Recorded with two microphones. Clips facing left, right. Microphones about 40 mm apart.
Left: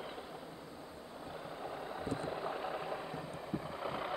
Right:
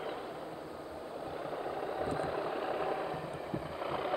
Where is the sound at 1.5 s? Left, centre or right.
Centre.